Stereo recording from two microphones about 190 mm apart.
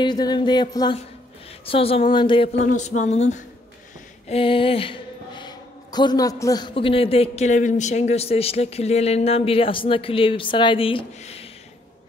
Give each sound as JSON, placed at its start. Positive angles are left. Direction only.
{"t": 0.0, "sound": "speech", "side_deg": 20}
{"t": 2.6, "sound": "speech", "side_deg": 40}